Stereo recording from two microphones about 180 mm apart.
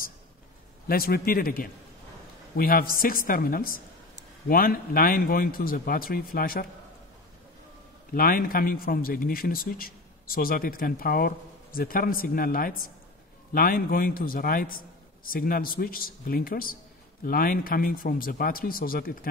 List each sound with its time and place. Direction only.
0.8 s a man's voice: 55° left (ahead or behind)
8.1 s speech: 55° left (ahead or behind)